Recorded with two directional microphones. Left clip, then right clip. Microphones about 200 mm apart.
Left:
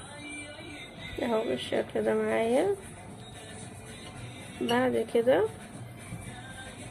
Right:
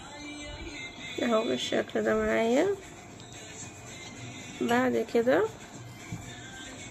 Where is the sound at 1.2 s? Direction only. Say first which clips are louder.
Right 2 dB; 20° right (ahead or behind).